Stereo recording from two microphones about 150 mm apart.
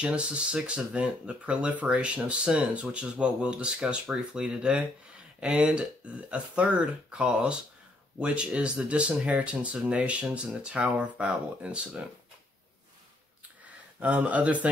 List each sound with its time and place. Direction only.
0.0 s speech: 5° right (ahead or behind)
13.9 s speech: 10° right (ahead or behind)